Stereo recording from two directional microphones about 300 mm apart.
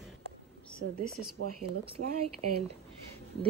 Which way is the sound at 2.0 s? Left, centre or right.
Right.